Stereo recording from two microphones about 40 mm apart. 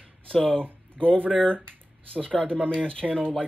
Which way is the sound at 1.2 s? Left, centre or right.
Left.